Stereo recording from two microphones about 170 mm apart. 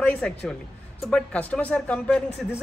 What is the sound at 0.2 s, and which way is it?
A man's voice, 5° left (ahead or behind).